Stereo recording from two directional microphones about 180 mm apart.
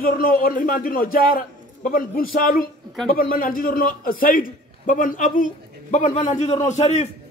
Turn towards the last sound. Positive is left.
turn(degrees=40)  # may be behind; listen again after turning